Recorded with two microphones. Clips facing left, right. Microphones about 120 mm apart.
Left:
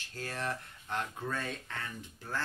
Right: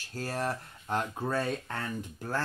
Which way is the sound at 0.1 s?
40° right (ahead or behind).